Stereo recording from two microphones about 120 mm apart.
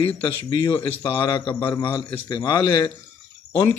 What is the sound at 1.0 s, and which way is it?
A man's voice, 35° left (ahead or behind).